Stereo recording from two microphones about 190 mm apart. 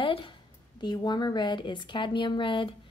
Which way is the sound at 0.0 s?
25° left (ahead or behind).